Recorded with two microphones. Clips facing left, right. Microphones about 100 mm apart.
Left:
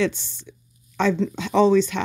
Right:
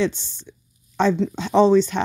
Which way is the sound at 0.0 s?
25° right (ahead or behind).